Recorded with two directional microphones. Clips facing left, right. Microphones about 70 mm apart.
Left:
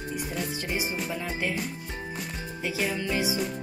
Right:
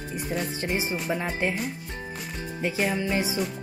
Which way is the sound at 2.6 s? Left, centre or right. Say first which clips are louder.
Right 3 dB; right.